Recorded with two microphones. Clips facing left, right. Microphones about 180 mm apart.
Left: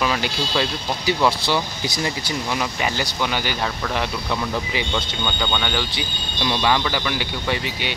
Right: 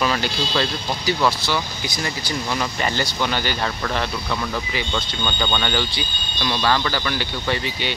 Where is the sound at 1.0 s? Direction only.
25° left (ahead or behind).